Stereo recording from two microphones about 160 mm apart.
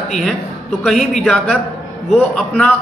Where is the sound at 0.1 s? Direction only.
Centre (ahead or behind).